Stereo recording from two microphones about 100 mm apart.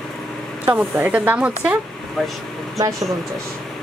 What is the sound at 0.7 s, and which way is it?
Speech, 15° right (ahead or behind).